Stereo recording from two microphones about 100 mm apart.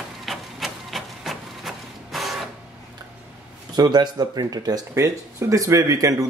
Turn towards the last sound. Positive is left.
turn(degrees=-35)  # may be behind; listen again after turning